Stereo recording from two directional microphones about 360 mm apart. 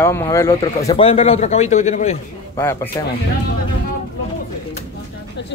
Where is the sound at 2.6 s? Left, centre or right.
Centre.